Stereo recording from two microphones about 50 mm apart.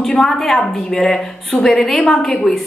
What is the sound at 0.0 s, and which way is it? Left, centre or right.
A woman's voice, centre.